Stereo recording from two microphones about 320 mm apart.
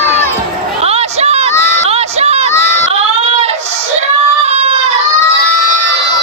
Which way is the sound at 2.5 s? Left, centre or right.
Centre.